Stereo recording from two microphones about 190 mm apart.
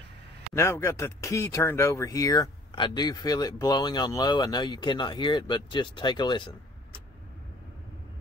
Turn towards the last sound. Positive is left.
turn(degrees=25)  # may be behind; listen again after turning